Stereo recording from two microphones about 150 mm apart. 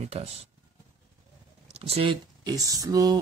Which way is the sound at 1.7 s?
40° right (ahead or behind).